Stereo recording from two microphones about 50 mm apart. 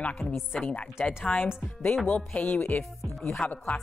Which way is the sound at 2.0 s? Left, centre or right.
Left.